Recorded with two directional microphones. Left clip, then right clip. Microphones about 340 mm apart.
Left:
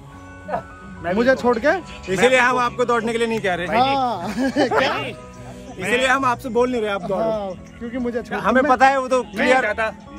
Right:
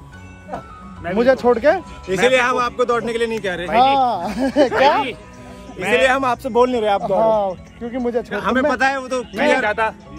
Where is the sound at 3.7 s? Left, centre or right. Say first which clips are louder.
Right 6 dB; centre.